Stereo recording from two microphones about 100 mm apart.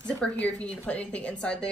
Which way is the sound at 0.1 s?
10° left (ahead or behind).